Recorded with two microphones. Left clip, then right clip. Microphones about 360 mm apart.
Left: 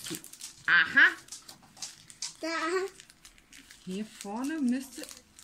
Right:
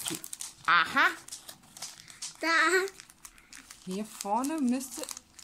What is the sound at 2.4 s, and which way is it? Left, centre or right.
Speech, right.